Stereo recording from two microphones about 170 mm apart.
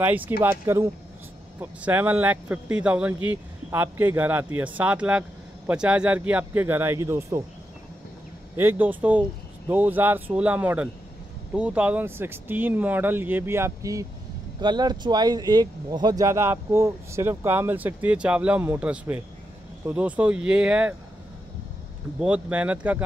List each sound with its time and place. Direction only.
0.0 s speech: 10° right (ahead or behind)
8.5 s speech: 10° right (ahead or behind)
22.2 s speech: 5° right (ahead or behind)